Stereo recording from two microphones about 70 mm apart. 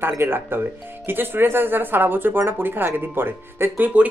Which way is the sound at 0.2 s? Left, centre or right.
Right.